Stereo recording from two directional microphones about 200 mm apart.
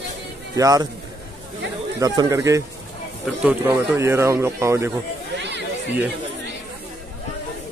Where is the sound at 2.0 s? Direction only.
15° right (ahead or behind).